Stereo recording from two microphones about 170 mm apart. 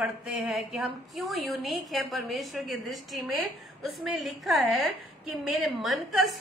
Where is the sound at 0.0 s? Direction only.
5° right (ahead or behind).